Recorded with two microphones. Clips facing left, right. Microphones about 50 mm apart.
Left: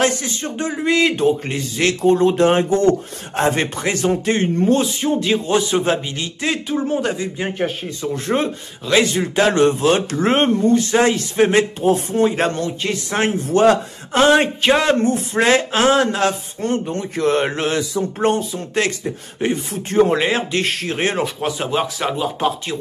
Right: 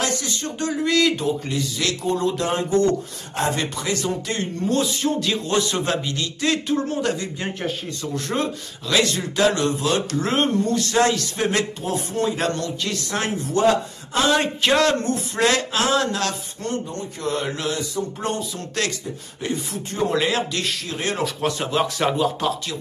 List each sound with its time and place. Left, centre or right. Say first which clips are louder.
0.0 s speech: left 6 dB; left
14.6 s speech: left 3 dB; centre
16.8 s speech: left 8 dB; left
17.5 s speech: left 5 dB; left
18.2 s speech: left 8 dB; left
20.6 s speech: left 5 dB; left
21.2 s a man's voice: left 2 dB; centre